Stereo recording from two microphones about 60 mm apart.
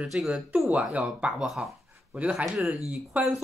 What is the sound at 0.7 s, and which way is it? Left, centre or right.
Speech, right.